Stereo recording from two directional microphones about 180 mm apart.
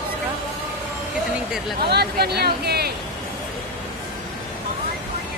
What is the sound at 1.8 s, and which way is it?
Speech, 65° right (ahead or behind).